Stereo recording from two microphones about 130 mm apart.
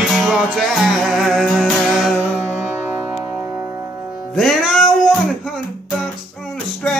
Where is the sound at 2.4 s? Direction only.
15° right (ahead or behind).